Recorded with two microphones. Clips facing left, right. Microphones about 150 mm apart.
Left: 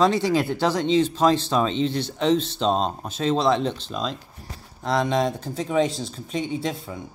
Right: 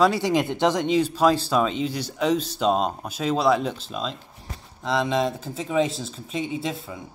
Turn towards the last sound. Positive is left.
turn(degrees=0)  # may be behind; listen again after turning